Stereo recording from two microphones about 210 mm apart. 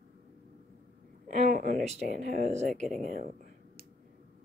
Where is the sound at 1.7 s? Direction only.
40° right (ahead or behind).